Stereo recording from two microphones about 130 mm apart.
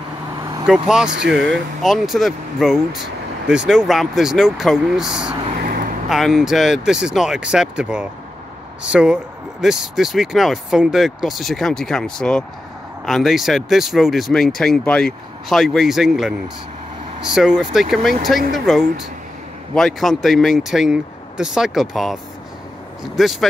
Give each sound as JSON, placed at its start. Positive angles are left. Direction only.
{"t": 0.8, "sound": "speech", "side_deg": -5}
{"t": 5.6, "sound": "vehicle", "side_deg": -90}
{"t": 6.0, "sound": "speech", "side_deg": 0}